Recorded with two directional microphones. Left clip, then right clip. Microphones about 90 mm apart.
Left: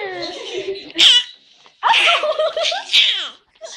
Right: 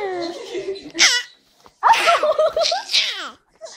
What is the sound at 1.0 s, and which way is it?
Speech, 45° right (ahead or behind).